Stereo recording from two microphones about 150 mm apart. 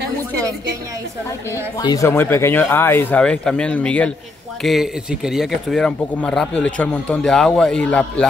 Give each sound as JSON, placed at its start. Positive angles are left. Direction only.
{"t": 1.8, "sound": "speech", "side_deg": 25}
{"t": 2.0, "sound": "speech", "side_deg": 15}
{"t": 4.6, "sound": "speech", "side_deg": 0}